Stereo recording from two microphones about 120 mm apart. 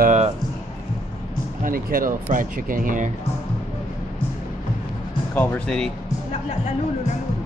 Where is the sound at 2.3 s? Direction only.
90° right.